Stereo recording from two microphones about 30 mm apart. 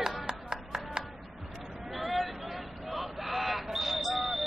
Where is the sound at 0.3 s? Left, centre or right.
Right.